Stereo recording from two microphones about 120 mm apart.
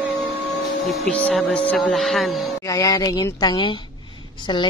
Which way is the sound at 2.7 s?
25° left (ahead or behind).